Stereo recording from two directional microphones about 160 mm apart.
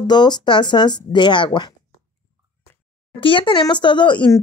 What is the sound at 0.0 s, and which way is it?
Speech, 25° left (ahead or behind).